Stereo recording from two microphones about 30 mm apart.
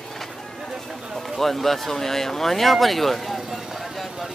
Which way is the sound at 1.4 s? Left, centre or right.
Centre.